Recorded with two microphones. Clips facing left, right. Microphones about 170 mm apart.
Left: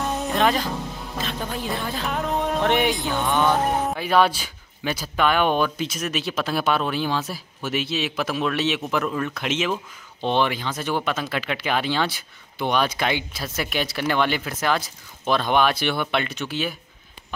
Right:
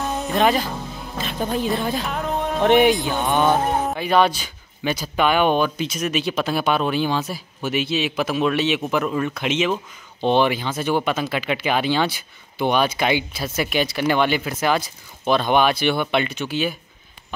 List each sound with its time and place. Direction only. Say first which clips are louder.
0.0 s music: right 2 dB; centre (ahead or behind)
1.8 s speech: right 5 dB; 15° right (ahead or behind)
2.0 s music: even; centre (ahead or behind)
2.6 s speech: right 9 dB; 20° right (ahead or behind)
3.9 s speech: right 2 dB; 5° left (ahead or behind)